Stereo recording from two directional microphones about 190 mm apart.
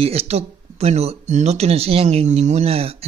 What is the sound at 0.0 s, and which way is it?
Speech, 30° right (ahead or behind).